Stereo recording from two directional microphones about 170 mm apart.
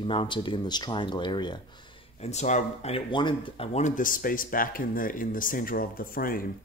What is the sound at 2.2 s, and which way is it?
Speech, 40° left (ahead or behind).